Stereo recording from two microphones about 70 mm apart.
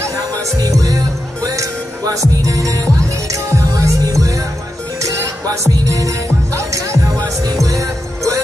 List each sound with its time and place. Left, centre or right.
0.6 s music: right